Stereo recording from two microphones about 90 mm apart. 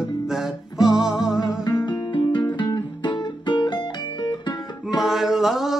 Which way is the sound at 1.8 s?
60° left (ahead or behind).